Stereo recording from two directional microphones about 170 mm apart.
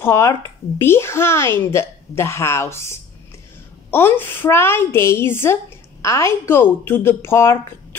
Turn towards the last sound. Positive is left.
turn(degrees=15)  # may be behind; listen again after turning